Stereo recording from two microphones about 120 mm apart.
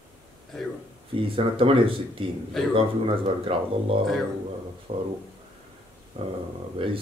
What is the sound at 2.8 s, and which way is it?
Speech, 50° right (ahead or behind).